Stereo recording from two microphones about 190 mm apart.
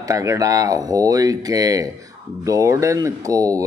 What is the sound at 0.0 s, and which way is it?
Speech, 15° right (ahead or behind).